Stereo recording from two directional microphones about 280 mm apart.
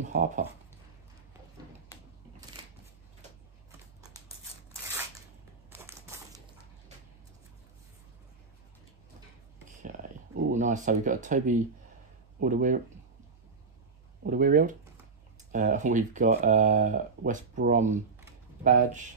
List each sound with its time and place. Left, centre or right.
0.0 s speech: right
5.7 s a sound: centre
10.3 s speech: right
14.2 s speech: right